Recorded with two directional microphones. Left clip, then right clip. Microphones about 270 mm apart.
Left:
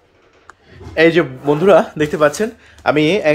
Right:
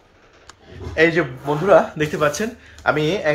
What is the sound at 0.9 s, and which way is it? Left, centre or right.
Speech, left.